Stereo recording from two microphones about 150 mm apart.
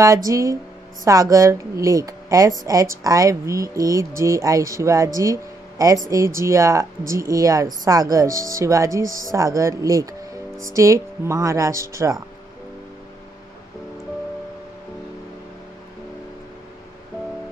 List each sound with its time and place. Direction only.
0.0 s speech: 20° right (ahead or behind)